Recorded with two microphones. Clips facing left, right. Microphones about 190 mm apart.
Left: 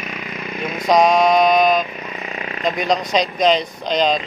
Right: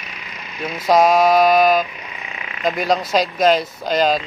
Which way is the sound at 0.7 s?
5° right (ahead or behind).